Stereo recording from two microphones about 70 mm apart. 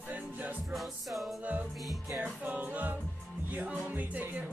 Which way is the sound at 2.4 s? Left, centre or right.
Right.